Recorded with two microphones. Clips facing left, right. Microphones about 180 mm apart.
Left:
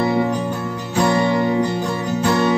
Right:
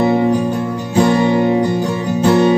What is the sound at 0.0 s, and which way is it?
Music, 20° right (ahead or behind).